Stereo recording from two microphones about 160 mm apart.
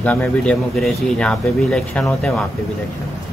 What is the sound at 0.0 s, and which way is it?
Speech, 10° left (ahead or behind).